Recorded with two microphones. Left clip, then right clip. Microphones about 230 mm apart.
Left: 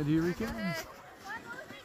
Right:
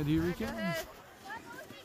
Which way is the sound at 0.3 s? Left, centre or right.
Right.